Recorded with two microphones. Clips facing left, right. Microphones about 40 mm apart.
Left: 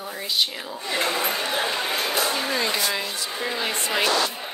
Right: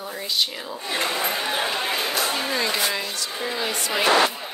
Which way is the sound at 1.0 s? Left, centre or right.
Centre.